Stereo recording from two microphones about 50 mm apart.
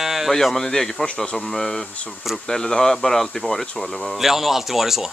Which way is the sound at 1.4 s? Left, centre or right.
Centre.